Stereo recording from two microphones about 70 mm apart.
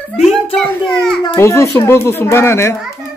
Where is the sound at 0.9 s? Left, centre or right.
Centre.